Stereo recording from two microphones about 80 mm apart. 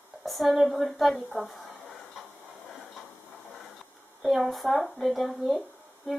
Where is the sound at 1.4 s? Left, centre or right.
Centre.